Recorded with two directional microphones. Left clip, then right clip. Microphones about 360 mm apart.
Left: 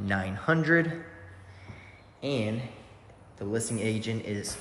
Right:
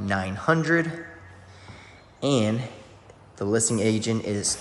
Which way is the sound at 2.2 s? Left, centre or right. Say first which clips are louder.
Right 7 dB; centre.